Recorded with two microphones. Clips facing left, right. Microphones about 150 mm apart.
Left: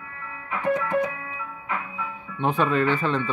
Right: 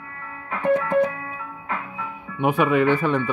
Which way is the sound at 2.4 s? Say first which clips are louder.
Right 3 dB; 15° right (ahead or behind).